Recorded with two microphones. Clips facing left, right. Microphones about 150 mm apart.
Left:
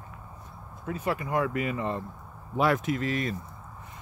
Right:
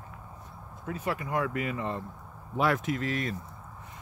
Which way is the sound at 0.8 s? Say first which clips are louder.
Left 2 dB; 25° left (ahead or behind).